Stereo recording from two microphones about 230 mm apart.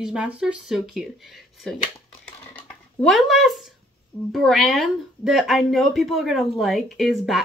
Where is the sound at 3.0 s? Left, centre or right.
Centre.